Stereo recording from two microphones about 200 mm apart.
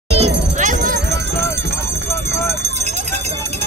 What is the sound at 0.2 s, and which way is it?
Music, 40° right (ahead or behind).